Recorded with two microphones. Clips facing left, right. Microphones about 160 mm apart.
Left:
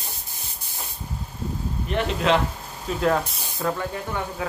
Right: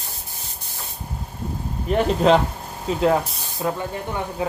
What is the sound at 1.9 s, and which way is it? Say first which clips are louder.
Speech: right 5 dB; 40° right (ahead or behind).